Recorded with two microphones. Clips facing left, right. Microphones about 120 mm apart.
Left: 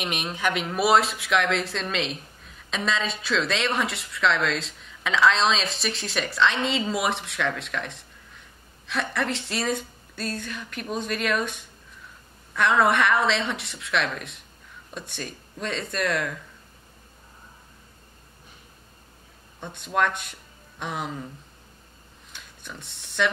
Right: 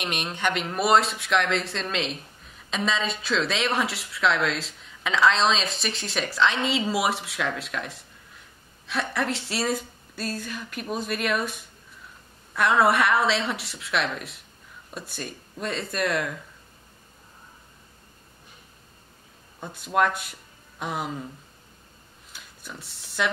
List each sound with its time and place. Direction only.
0.0 s speech: centre (ahead or behind)
19.6 s speech: 5° right (ahead or behind)
22.3 s a sound: 5° right (ahead or behind)